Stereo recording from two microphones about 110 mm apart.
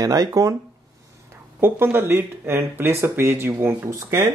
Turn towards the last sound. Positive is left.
turn(degrees=-25)  # may be behind; listen again after turning